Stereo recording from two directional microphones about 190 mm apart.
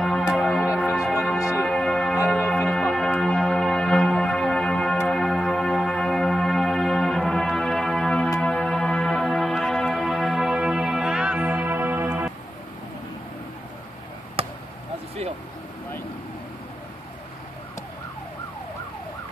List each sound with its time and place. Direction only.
0.0 s a sound: centre (ahead or behind)
0.9 s music: 5° right (ahead or behind)
1.4 s music: 15° left (ahead or behind)
1.7 s music: 5° left (ahead or behind)
14.4 s basketball bounce: 30° right (ahead or behind)